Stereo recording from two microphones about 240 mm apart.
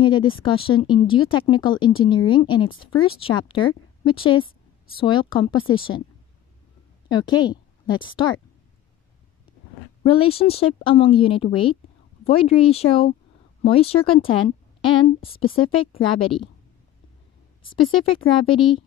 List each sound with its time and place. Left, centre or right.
0.0 s speech: centre
7.1 s a woman's voice: centre
10.0 s speech: left
17.9 s speech: left